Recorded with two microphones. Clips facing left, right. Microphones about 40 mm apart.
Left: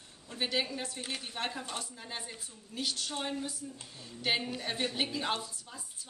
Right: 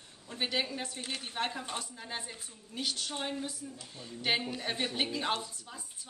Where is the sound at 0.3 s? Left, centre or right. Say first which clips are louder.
Even; centre.